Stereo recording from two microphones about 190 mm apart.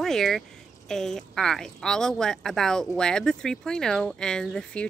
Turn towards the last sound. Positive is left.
turn(degrees=5)  # may be behind; listen again after turning